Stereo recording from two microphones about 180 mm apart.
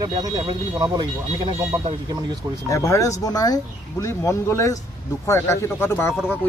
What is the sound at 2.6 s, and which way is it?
Speech, 15° left (ahead or behind).